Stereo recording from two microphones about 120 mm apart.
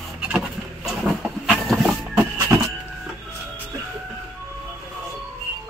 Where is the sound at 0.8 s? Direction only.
Centre (ahead or behind).